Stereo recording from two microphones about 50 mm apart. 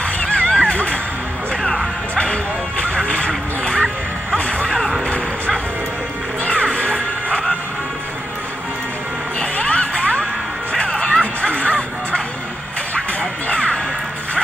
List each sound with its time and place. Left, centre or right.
0.0 s a sound: left
1.5 s music: centre
4.6 s music: centre
6.4 s music: left
9.4 s music: left
13.5 s music: left